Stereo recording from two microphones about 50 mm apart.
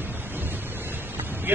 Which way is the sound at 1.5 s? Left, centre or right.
Right.